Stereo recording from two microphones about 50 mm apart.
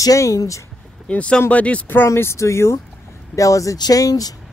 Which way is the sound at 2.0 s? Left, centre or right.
Left.